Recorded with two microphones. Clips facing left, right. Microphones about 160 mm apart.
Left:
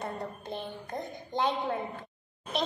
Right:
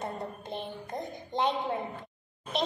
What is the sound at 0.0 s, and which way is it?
Music, 25° right (ahead or behind).